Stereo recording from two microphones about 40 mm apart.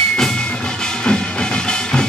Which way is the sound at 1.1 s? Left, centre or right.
Left.